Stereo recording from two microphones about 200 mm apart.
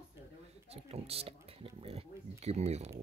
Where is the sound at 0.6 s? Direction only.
30° right (ahead or behind).